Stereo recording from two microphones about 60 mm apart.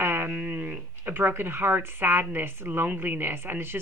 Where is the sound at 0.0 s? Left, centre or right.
Right.